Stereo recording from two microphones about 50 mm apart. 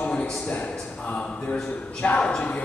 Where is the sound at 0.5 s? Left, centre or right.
Left.